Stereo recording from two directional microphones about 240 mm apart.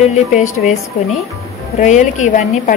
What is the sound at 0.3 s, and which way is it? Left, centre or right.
A woman's voice, left.